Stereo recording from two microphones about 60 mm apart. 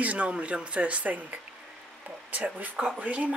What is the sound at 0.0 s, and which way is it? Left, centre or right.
Speech, right.